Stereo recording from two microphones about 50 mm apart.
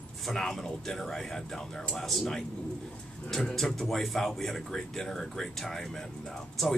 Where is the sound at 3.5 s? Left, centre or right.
Centre.